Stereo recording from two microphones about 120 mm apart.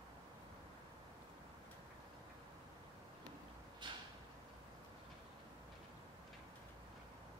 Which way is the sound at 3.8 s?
40° right (ahead or behind).